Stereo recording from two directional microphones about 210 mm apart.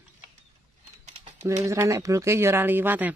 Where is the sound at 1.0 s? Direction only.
35° right (ahead or behind).